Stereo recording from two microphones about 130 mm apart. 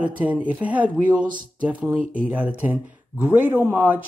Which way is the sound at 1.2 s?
90° right.